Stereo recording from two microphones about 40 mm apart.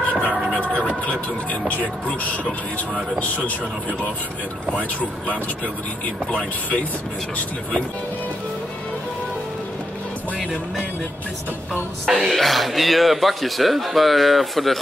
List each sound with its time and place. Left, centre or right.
0.2 s a sound: left
1.0 s speech: left
6.0 s speech: left
12.1 s a man's voice: centre